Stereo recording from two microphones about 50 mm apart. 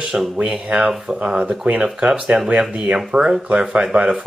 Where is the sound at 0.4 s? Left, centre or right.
Right.